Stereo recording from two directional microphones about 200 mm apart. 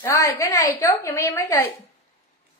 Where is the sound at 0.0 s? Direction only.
15° left (ahead or behind).